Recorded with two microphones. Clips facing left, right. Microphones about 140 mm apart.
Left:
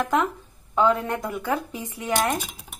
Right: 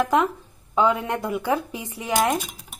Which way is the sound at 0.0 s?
10° right (ahead or behind).